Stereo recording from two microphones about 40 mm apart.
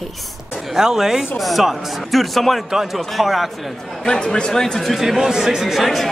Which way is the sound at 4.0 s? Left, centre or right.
Centre.